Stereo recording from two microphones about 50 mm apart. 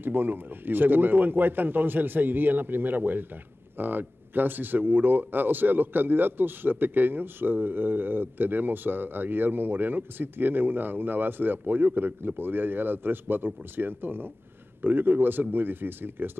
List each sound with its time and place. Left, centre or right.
0.0 s a man's voice: right